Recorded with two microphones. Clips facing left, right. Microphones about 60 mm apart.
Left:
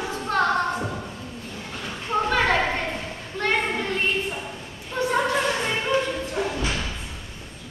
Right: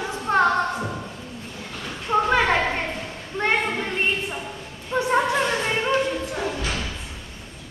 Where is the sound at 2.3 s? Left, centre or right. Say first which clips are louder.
Right 1 dB; centre.